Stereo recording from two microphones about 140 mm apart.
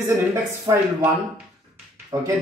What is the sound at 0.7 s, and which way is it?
Speech, 25° right (ahead or behind).